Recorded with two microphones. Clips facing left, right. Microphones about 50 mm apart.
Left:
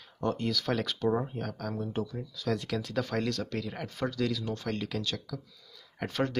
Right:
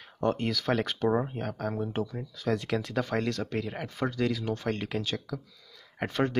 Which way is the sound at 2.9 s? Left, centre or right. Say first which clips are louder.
Even; right.